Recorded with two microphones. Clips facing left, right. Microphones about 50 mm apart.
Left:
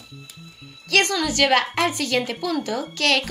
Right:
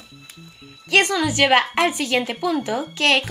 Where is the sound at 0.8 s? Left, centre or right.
Centre.